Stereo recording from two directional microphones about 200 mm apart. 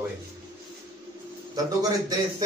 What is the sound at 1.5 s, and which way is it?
Speech, 20° right (ahead or behind).